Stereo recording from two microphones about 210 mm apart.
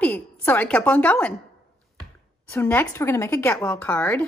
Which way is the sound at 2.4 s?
10° left (ahead or behind).